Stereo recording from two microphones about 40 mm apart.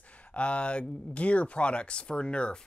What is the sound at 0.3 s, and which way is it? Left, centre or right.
Speech, left.